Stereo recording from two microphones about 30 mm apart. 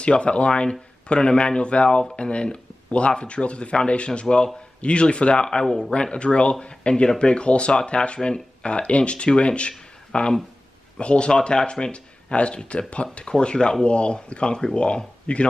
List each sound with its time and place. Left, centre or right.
0.0 s speech: left
5.5 s speech: left
6.1 s speech: left
13.4 s speech: left